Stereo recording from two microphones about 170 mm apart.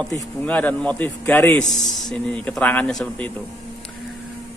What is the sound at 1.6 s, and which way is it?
Speech, 45° left (ahead or behind).